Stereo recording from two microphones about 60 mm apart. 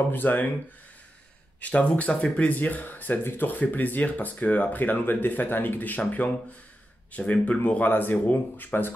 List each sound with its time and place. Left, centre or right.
0.1 s speech: left
1.6 s speech: left